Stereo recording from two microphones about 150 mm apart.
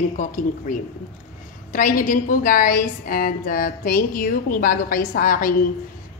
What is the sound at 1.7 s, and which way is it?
A woman's voice, 65° left (ahead or behind).